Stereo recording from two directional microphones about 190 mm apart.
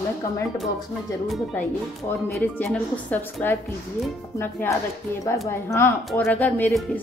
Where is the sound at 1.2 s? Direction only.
Centre (ahead or behind).